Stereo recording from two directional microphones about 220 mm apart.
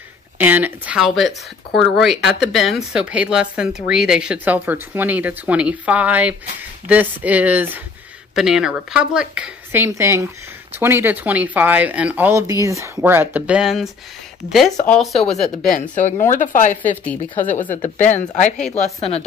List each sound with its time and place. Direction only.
0.4 s speech: 10° right (ahead or behind)
15.7 s speech: 35° left (ahead or behind)
16.8 s a woman's voice: 5° left (ahead or behind)
17.6 s speech: 35° left (ahead or behind)